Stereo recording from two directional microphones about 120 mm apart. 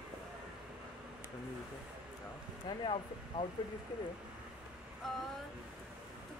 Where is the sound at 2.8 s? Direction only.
45° left (ahead or behind).